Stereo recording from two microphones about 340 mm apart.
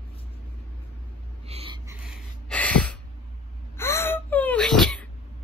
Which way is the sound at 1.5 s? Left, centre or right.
Centre.